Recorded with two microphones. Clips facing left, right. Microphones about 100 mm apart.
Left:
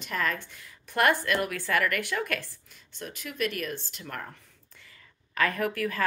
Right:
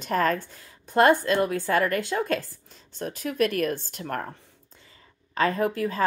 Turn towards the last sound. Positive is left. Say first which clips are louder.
# right 4 dB
turn(degrees=-25)  # may be behind; listen again after turning